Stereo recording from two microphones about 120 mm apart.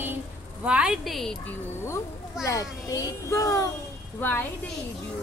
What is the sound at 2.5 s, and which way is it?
A child's voice, 30° left (ahead or behind).